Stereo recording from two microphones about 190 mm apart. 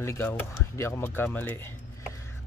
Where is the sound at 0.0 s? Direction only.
15° left (ahead or behind).